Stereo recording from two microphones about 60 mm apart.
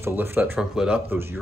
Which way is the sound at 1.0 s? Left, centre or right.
Right.